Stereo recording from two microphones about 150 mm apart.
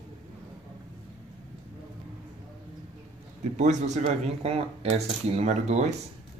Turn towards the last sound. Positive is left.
turn(degrees=-50)  # may be behind; listen again after turning